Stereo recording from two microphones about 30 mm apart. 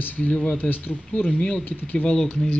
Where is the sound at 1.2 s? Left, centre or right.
Left.